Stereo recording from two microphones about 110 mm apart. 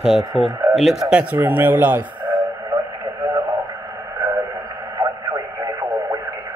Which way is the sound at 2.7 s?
30° right (ahead or behind).